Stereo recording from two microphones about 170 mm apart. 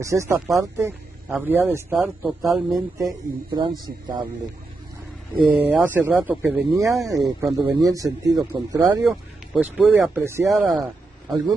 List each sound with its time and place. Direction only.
0.0 s speech: 15° right (ahead or behind)
2.0 s speech: centre (ahead or behind)
2.7 s speech: 25° right (ahead or behind)
5.4 s speech: 10° right (ahead or behind)
9.0 s speech: centre (ahead or behind)
10.5 s speech: centre (ahead or behind)